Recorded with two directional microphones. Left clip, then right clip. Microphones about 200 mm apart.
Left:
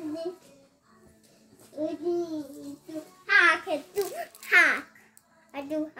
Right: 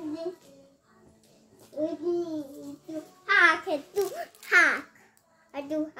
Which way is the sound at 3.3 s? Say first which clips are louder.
Even; 15° right (ahead or behind).